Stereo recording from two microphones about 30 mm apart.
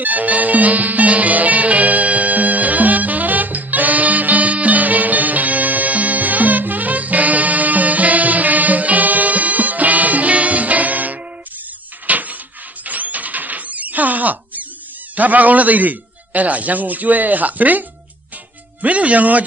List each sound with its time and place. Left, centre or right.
0.0 s music: right
12.1 s a sound: right
15.1 s a man's voice: right
18.8 s a man's voice: right